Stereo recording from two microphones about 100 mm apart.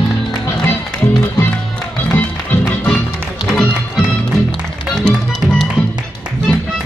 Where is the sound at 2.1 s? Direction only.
20° left (ahead or behind).